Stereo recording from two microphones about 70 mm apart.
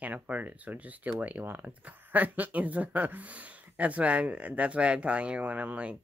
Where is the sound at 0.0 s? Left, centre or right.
Right.